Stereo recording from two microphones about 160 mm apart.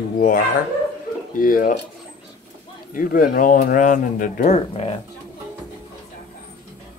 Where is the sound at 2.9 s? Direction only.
60° left (ahead or behind); by 4.9 s 40° left (ahead or behind).